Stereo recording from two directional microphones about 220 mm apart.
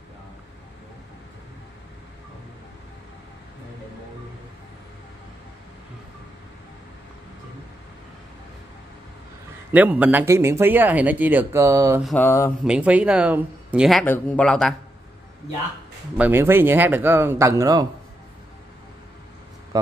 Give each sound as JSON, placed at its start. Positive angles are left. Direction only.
{"t": 9.7, "sound": "speech", "side_deg": -10}
{"t": 12.0, "sound": "mantra", "side_deg": 5}
{"t": 12.6, "sound": "speech", "side_deg": -5}
{"t": 16.2, "sound": "speech", "side_deg": -10}
{"t": 19.7, "sound": "speech", "side_deg": -15}